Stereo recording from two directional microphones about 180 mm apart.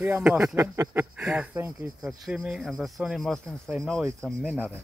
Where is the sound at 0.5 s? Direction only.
15° right (ahead or behind).